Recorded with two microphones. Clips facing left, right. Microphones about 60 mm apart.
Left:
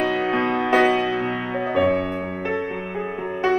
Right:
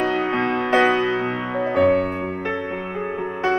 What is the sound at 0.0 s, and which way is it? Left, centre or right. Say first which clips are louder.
Music: even; right.